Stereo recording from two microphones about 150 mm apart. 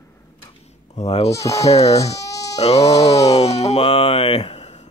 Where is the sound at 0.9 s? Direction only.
45° left (ahead or behind).